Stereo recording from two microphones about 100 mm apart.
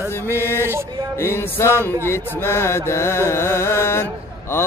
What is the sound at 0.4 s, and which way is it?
Mantra, 25° left (ahead or behind).